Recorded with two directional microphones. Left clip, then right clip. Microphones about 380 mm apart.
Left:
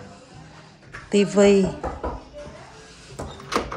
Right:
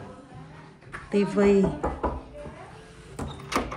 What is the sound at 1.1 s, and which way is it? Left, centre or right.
Speech, centre.